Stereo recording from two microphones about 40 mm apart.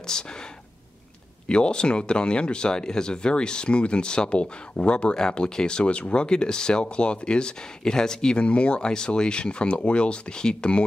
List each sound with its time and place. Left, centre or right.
0.0 s speech: centre
1.5 s speech: left